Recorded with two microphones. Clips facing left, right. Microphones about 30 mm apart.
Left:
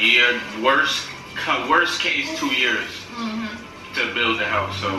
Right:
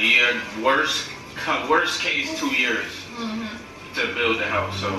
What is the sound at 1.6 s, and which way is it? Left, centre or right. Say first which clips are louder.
A man's voice: left 2 dB; left.